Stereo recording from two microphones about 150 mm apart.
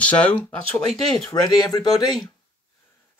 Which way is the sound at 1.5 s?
25° left (ahead or behind).